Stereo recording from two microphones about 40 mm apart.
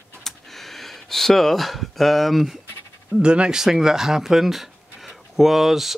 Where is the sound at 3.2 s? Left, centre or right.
Right.